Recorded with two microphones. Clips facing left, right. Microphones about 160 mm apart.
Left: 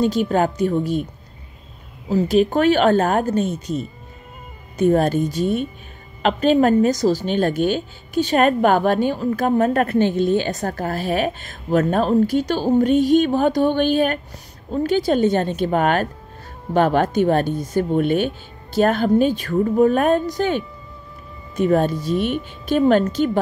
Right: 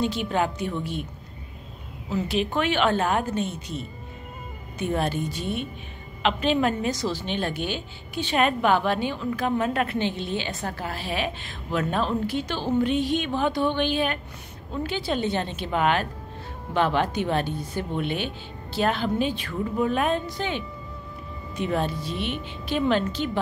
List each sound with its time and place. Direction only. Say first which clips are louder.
0.0 s a woman's voice: left 7 dB; 40° left (ahead or behind)
2.0 s a woman's voice: left 9 dB; 40° left (ahead or behind)